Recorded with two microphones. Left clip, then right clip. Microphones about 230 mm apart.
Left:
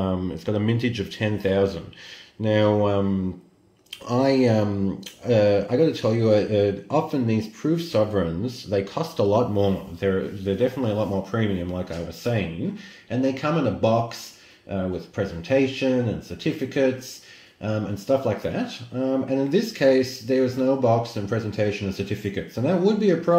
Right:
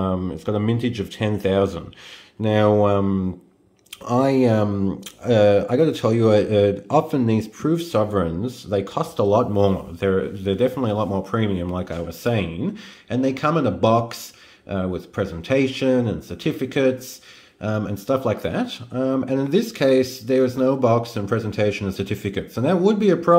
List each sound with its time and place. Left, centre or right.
0.0 s speech: centre